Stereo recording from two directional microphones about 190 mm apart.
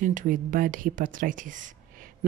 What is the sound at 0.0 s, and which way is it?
Speech, 45° right (ahead or behind).